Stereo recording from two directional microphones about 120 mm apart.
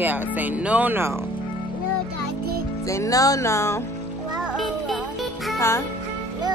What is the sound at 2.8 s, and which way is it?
Speech, 25° left (ahead or behind).